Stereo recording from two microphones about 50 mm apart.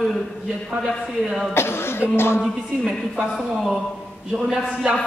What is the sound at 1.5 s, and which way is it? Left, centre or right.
Cough, left.